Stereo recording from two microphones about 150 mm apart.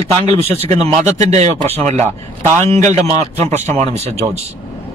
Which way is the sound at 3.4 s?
45° right (ahead or behind).